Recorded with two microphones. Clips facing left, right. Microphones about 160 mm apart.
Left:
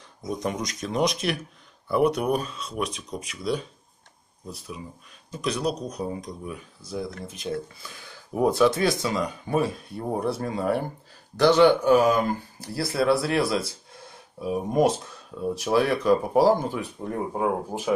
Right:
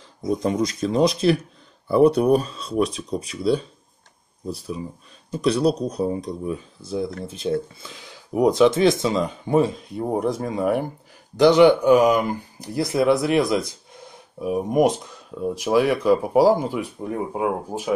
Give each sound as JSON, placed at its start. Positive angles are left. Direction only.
{"t": 0.2, "sound": "speech", "side_deg": -30}